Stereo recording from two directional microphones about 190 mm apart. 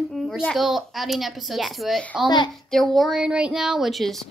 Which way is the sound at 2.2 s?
25° left (ahead or behind).